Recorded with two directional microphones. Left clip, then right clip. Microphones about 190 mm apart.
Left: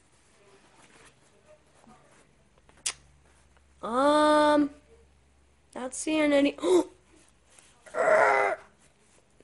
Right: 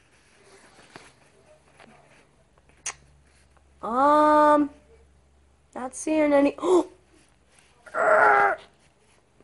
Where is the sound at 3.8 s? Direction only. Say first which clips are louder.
Right 4 dB; 15° left (ahead or behind).